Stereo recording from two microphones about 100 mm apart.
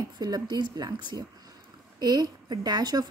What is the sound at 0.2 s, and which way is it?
A woman's voice, 45° right (ahead or behind).